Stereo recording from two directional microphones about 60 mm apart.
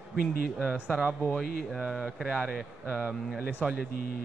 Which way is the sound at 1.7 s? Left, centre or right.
Centre.